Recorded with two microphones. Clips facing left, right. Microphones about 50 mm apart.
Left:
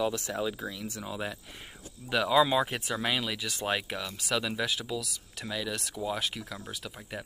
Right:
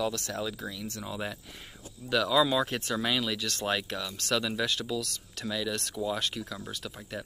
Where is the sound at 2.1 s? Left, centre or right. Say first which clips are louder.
Left 1 dB; left.